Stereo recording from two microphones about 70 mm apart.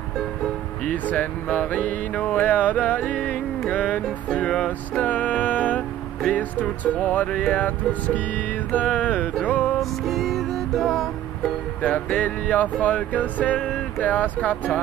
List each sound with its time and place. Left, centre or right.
0.8 s speech: centre
3.7 s music: centre
6.3 s speech: left
9.8 s music: centre
11.8 s speech: centre